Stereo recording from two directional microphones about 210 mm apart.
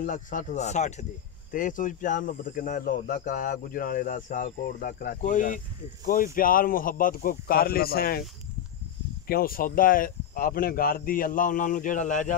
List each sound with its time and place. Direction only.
0.0 s speech: 40° left (ahead or behind)
9.3 s speech: 45° left (ahead or behind)